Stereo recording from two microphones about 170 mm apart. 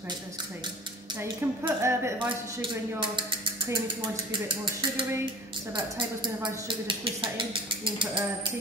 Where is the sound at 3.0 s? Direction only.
30° right (ahead or behind).